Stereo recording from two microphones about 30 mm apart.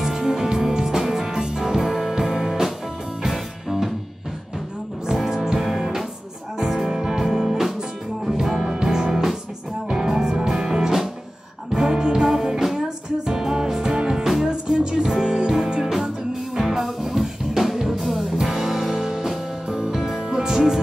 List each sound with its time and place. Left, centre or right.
0.0 s music: centre
3.3 s music: centre
5.2 s music: centre
8.6 s music: right
14.2 s music: centre
14.5 s music: right
16.5 s music: centre
18.4 s music: centre